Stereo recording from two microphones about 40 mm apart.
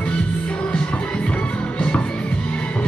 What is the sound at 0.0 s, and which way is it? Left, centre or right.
Music, left.